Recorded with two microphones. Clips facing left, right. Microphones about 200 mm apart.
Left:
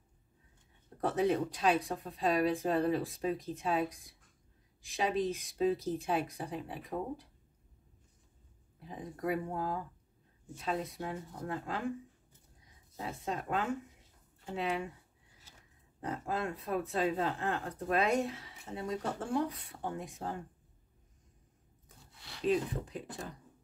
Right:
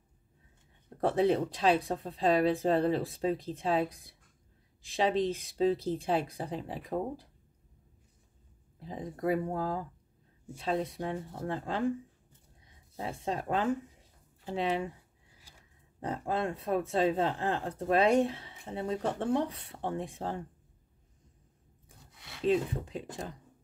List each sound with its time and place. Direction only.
1.0 s speech: 30° right (ahead or behind)
8.7 s speech: 30° right (ahead or behind)
12.9 s speech: 30° right (ahead or behind)
16.0 s speech: 30° right (ahead or behind)
21.8 s a sound: 20° right (ahead or behind)